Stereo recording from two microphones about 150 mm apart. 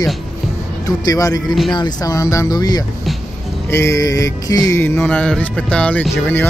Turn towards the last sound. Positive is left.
turn(degrees=15)  # may be behind; listen again after turning